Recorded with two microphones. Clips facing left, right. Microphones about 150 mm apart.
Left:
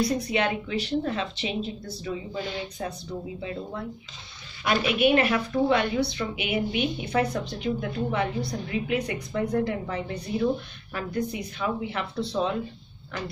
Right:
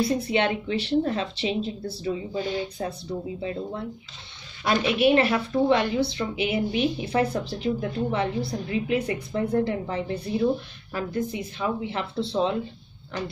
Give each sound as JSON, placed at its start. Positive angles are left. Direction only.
{"t": 0.0, "sound": "speech", "side_deg": -25}
{"t": 4.6, "sound": "a woman's voice", "side_deg": -30}